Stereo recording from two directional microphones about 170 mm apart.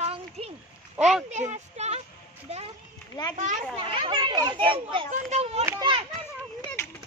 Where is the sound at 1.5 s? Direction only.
40° right (ahead or behind).